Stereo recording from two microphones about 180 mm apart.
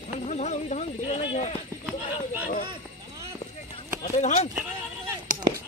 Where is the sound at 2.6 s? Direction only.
25° right (ahead or behind).